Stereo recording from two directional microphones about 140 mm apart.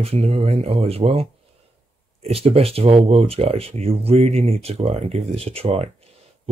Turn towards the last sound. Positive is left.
turn(degrees=-45)  # may be behind; listen again after turning